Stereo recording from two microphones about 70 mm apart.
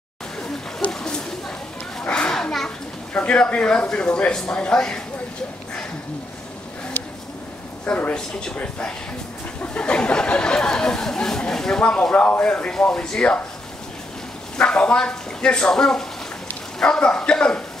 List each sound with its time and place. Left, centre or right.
0.9 s a sound: centre
2.0 s children playing: centre
3.1 s speech: centre
7.8 s speech: centre
14.6 s speech: centre